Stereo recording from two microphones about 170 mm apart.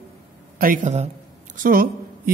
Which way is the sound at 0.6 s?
55° right (ahead or behind).